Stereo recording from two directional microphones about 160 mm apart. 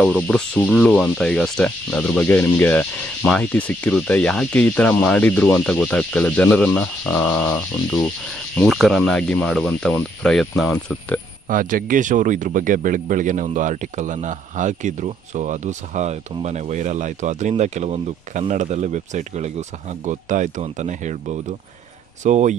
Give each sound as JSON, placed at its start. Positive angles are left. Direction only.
{"t": 0.0, "sound": "rub", "side_deg": 5}
{"t": 8.5, "sound": "speech", "side_deg": 0}
{"t": 11.4, "sound": "speech", "side_deg": -60}